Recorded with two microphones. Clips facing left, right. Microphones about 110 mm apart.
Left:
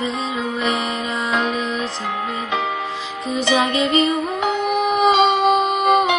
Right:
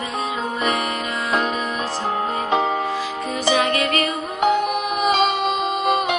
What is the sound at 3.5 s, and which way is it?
Music, 20° left (ahead or behind).